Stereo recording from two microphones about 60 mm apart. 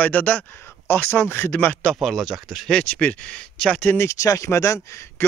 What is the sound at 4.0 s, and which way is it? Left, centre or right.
Speech, left.